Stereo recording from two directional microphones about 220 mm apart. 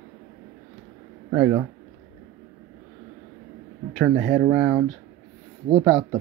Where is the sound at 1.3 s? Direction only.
10° right (ahead or behind).